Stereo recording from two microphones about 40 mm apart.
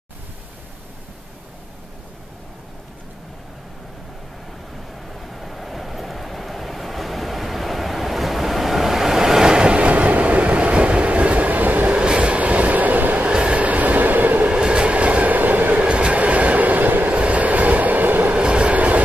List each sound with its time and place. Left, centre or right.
5.1 s vehicle: centre; by 11.9 s right
11.9 s train: right
13.3 s train: right
14.5 s train: right
15.8 s train: right
17.1 s train: right
18.3 s train: right